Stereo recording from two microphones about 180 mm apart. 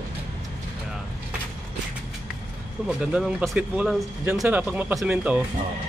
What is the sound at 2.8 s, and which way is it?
Speech, 5° right (ahead or behind).